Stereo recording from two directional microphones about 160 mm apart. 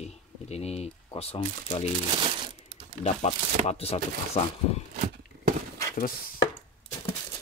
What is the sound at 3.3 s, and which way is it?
Speech, 40° left (ahead or behind).